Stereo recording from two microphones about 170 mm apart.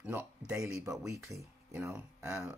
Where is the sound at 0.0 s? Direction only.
10° right (ahead or behind).